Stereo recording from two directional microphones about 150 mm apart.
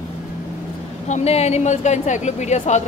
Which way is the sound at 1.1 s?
45° left (ahead or behind).